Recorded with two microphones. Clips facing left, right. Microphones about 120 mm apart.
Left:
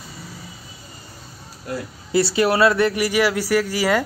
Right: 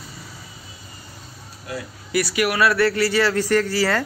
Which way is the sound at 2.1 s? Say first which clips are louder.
Left 3 dB; 30° left (ahead or behind).